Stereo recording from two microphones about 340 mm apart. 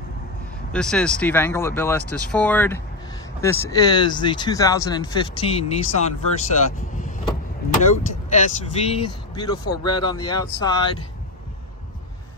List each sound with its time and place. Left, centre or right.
0.7 s speech: centre
7.0 s vehicle: left
7.9 s speech: left